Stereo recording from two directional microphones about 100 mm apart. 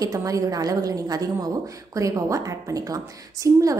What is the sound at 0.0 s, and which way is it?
A woman's voice, 35° right (ahead or behind).